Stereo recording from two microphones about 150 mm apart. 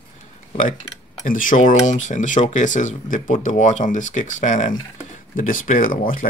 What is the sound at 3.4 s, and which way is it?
Speech, 55° left (ahead or behind).